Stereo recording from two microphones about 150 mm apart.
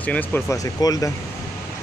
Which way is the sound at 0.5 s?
25° left (ahead or behind).